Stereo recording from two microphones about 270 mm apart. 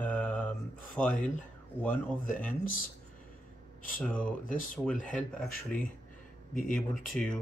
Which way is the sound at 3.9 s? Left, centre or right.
Centre.